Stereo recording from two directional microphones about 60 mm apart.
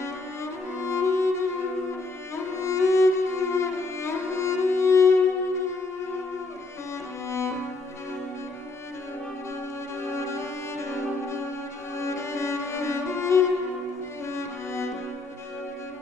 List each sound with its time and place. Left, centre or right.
0.0 s music: left
7.2 s music: left
10.1 s cello: left